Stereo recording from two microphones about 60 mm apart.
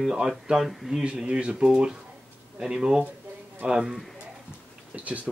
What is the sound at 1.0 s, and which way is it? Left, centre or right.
Speech, centre.